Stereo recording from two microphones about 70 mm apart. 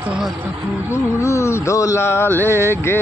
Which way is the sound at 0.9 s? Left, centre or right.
Left.